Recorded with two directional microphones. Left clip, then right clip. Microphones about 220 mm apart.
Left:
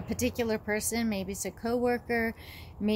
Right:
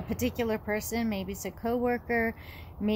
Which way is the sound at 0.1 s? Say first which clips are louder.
Even; 15° left (ahead or behind).